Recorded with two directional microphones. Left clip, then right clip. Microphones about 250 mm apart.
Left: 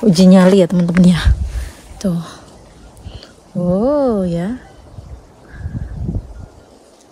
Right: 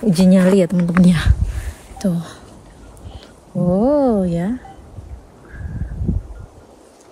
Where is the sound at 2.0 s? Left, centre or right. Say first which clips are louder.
Left 1 dB; centre.